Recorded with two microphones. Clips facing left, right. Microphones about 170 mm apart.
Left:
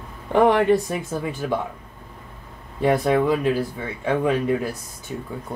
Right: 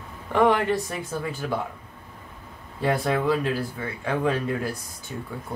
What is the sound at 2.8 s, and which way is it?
Speech, 20° left (ahead or behind).